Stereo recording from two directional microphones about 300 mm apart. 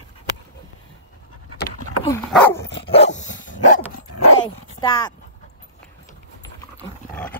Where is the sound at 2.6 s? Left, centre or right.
Left.